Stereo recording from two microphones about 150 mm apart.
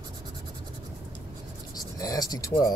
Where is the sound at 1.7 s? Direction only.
25° left (ahead or behind).